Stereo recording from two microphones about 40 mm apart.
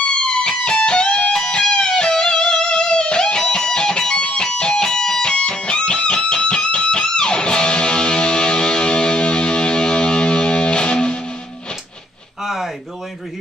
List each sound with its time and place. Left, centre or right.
0.1 s music: left